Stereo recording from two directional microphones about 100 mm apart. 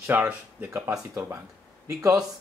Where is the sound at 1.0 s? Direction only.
30° right (ahead or behind).